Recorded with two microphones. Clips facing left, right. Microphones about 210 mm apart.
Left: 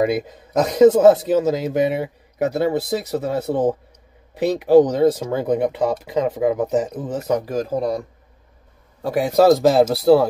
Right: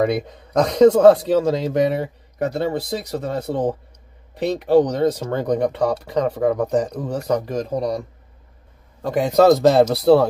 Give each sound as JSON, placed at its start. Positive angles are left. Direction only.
{"t": 0.0, "sound": "a man's voice", "side_deg": 5}
{"t": 9.0, "sound": "a man's voice", "side_deg": 5}